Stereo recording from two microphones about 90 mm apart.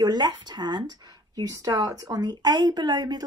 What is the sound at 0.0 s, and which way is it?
Speech, 55° right (ahead or behind).